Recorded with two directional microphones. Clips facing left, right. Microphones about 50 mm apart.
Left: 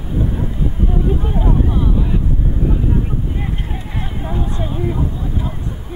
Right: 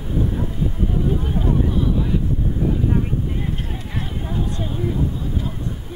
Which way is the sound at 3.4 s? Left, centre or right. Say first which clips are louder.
Left 1 dB; centre.